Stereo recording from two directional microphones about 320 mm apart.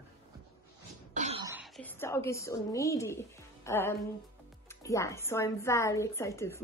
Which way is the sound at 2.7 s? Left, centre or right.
Centre.